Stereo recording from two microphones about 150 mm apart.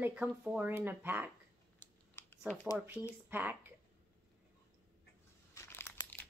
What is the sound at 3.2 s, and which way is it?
Speech, 15° right (ahead or behind).